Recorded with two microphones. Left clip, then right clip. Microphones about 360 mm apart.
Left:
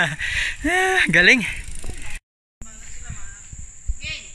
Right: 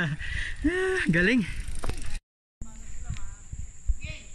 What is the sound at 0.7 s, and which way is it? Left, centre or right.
Speech, centre.